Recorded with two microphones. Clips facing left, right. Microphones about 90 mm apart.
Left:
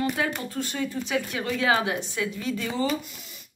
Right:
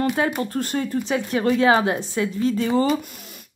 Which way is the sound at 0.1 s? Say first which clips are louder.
Right 6 dB; 40° right (ahead or behind).